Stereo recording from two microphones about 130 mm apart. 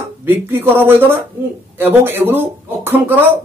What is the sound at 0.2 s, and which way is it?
A man's voice, 15° right (ahead or behind).